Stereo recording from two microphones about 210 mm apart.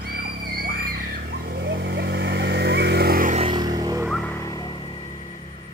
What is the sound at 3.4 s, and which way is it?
Music, 20° right (ahead or behind).